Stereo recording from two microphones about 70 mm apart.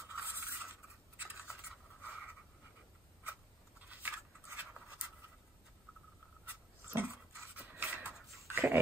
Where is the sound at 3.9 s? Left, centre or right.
Right.